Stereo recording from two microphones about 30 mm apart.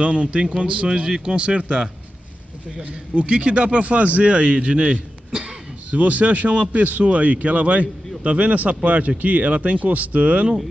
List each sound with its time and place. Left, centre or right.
0.0 s a man's voice: right
1.3 s a man's voice: right
2.8 s a man's voice: right
5.9 s speech: right
7.1 s a man's voice: right